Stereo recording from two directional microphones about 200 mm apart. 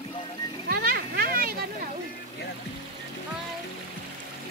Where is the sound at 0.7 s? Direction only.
50° right (ahead or behind).